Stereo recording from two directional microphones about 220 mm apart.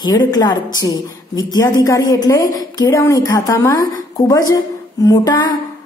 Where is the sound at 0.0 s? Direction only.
15° left (ahead or behind).